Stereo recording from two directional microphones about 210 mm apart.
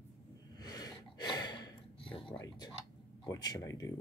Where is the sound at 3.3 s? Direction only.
15° left (ahead or behind).